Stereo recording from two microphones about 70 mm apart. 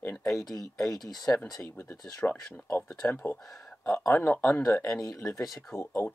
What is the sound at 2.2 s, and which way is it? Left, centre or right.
Speech, left.